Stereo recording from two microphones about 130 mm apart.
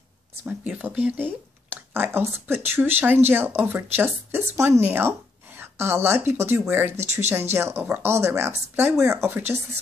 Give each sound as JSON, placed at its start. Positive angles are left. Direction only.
{"t": 0.4, "sound": "speech", "side_deg": -10}